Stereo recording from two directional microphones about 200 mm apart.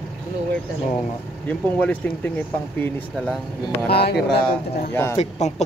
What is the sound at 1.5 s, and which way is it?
Speech, 5° left (ahead or behind).